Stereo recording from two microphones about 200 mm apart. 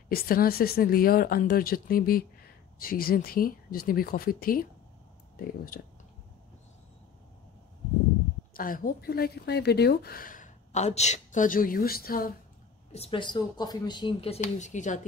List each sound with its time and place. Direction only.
0.1 s speech: 50° left (ahead or behind)
5.7 s speech: 45° left (ahead or behind)
8.5 s speech: 45° left (ahead or behind)
12.9 s speech: 30° left (ahead or behind)